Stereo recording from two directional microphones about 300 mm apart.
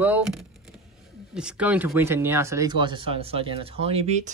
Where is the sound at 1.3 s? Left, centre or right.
Centre.